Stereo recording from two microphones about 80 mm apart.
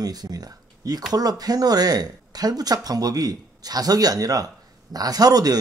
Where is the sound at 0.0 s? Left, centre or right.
Right.